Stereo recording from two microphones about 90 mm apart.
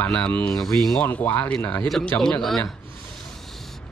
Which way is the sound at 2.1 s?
10° left (ahead or behind).